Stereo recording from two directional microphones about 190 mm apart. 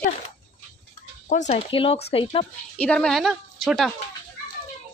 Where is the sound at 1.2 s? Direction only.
40° left (ahead or behind).